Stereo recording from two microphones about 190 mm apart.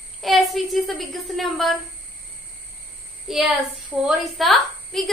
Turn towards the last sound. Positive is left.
turn(degrees=0)  # may be behind; listen again after turning